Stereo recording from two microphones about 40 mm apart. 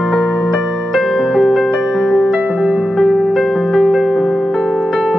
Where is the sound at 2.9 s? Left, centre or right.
Centre.